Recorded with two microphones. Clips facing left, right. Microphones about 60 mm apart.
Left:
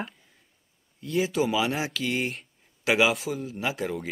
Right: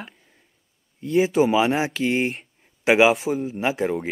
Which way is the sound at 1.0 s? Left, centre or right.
Right.